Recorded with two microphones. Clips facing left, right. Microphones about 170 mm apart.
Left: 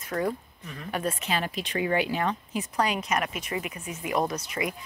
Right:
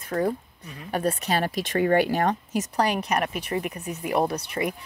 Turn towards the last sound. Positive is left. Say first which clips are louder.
# right 3 dB
turn(degrees=-35)  # may be behind; listen again after turning